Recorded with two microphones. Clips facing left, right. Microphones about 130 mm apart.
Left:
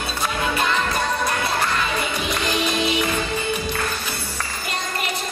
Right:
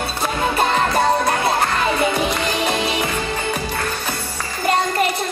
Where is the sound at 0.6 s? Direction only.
40° right (ahead or behind).